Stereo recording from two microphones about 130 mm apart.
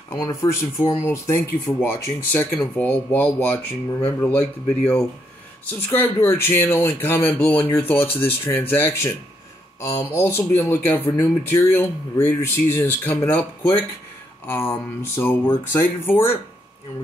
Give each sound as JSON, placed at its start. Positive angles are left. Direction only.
{"t": 0.1, "sound": "speech", "side_deg": 25}